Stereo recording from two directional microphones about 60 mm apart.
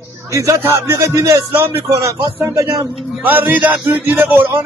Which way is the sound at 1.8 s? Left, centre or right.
Right.